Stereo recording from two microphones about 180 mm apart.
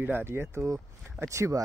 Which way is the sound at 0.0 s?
10° right (ahead or behind).